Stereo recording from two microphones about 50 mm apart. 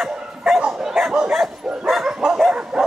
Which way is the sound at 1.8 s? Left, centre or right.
Centre.